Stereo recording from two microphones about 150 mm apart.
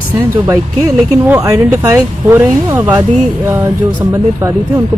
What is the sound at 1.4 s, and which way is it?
Speech, 20° right (ahead or behind).